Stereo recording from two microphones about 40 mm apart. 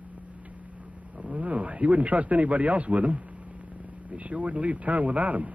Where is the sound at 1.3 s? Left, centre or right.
Right.